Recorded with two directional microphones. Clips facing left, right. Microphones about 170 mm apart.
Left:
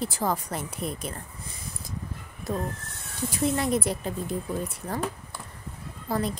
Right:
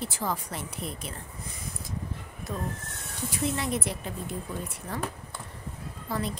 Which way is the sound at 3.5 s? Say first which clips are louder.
Left 5 dB; 40° left (ahead or behind).